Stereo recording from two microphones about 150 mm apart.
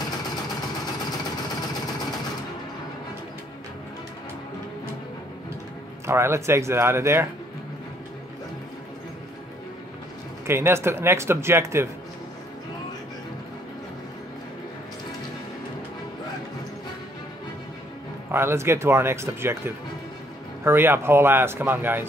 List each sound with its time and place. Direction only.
6.0 s speech: 15° right (ahead or behind)
10.4 s speech: 15° right (ahead or behind)
18.3 s speech: 15° right (ahead or behind)